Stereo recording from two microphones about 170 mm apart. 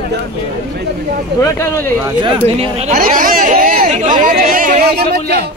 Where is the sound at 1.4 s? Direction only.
15° left (ahead or behind).